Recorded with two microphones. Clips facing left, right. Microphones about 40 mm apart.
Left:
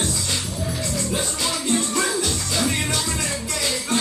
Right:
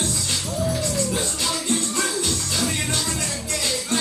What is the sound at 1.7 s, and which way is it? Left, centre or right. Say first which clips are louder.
Music: left 3 dB; left.